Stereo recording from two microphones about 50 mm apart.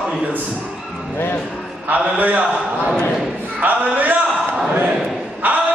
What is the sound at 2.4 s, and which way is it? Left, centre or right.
Speech, centre.